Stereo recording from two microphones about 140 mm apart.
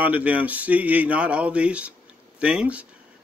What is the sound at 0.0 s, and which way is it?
Speech, 10° right (ahead or behind).